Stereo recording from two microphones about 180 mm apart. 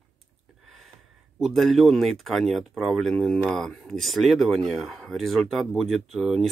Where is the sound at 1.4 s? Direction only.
Centre (ahead or behind).